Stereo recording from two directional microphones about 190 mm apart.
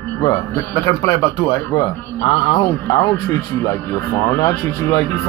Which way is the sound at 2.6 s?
15° left (ahead or behind).